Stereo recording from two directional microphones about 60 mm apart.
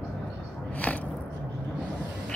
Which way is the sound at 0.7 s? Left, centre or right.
Left.